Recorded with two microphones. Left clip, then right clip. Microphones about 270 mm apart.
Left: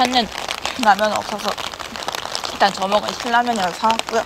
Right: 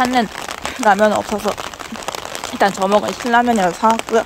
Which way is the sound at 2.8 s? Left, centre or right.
Right.